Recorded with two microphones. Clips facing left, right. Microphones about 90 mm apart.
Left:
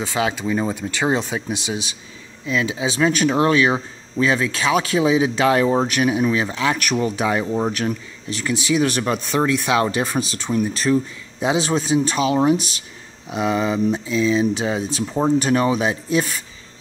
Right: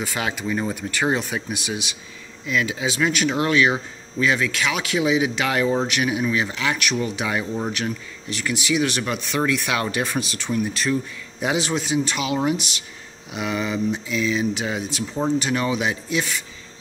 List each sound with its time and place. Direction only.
0.0 s speech: 25° left (ahead or behind)